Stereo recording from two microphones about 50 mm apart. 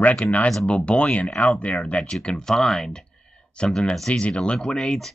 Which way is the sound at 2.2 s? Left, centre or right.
Centre.